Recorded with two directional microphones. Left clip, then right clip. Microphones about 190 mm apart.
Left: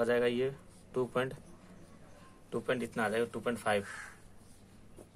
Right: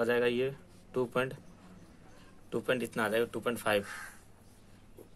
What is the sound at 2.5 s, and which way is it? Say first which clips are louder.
Speech: right 2 dB; 15° right (ahead or behind).